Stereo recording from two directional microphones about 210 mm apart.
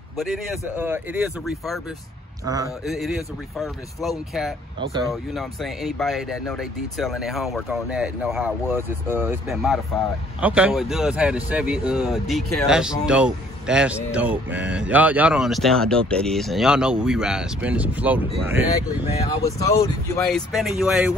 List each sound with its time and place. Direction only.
0.2 s speech: centre (ahead or behind)
2.4 s a man's voice: 15° right (ahead or behind)
3.5 s speech: centre (ahead or behind)
4.7 s speech: 25° right (ahead or behind)
5.3 s speech: centre (ahead or behind)
19.4 s speech: 15° left (ahead or behind)
20.2 s speech: centre (ahead or behind)